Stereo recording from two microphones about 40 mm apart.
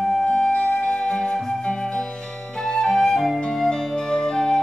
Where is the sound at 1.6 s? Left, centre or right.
Centre.